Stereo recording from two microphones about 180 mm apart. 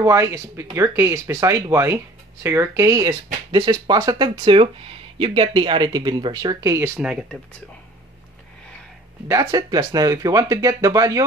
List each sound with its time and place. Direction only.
0.0 s speech: 15° right (ahead or behind)
7.0 s speech: 5° right (ahead or behind)
9.3 s speech: 20° right (ahead or behind)